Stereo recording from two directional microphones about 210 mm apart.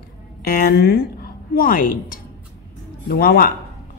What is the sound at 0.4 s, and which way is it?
A woman's voice, 50° left (ahead or behind).